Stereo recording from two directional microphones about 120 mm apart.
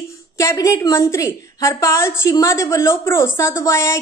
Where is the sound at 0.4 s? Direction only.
25° left (ahead or behind).